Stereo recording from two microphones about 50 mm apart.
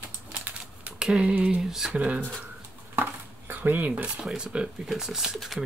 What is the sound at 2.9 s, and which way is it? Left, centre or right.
Dishes, right.